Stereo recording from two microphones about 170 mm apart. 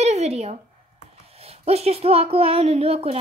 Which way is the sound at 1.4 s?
35° right (ahead or behind).